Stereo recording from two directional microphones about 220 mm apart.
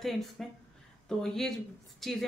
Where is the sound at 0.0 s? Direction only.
Centre (ahead or behind).